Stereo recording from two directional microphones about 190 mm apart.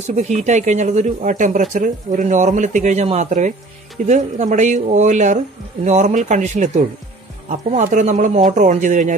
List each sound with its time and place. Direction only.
0.0 s speech: 35° right (ahead or behind)